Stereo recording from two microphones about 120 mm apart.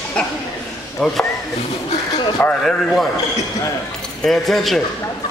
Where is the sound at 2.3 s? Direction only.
5° left (ahead or behind).